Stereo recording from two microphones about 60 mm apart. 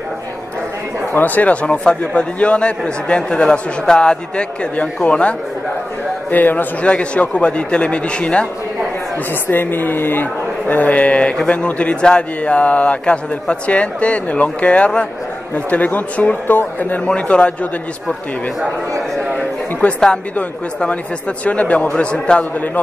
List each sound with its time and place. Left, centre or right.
1.1 s a man's voice: left
6.3 s a man's voice: left
9.5 s speech: left
10.7 s a man's voice: left
19.8 s a man's voice: left